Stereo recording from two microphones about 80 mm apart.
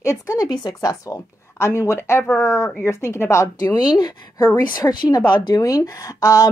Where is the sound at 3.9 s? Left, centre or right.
Left.